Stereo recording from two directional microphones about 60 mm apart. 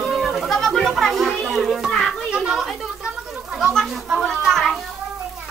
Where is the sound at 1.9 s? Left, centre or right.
Centre.